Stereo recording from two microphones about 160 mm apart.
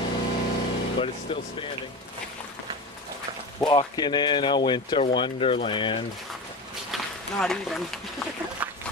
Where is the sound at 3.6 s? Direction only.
25° left (ahead or behind).